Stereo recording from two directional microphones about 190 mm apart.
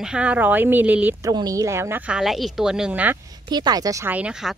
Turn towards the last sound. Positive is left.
turn(degrees=-5)  # may be behind; listen again after turning